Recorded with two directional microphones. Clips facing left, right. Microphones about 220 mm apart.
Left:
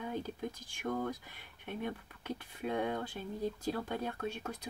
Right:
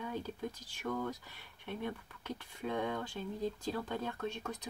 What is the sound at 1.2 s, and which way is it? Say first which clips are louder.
Speech: left 1 dB; 15° left (ahead or behind).